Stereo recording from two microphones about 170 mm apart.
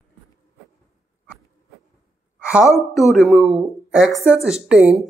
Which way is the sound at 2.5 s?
Centre (ahead or behind).